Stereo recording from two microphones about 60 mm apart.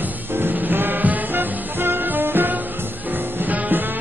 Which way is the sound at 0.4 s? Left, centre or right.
Right.